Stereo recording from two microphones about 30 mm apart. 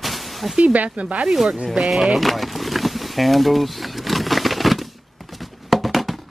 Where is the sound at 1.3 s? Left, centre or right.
Centre.